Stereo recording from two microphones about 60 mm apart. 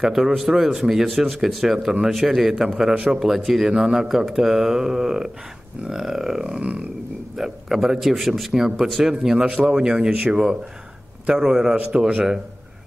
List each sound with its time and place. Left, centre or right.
0.0 s a man's voice: centre
6.4 s a sound: centre
7.3 s a man's voice: centre